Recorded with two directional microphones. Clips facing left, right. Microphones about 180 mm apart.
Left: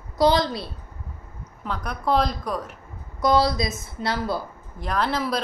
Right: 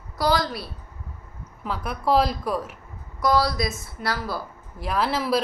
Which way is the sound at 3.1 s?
20° left (ahead or behind).